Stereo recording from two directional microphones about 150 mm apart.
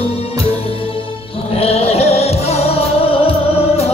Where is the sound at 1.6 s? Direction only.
40° left (ahead or behind).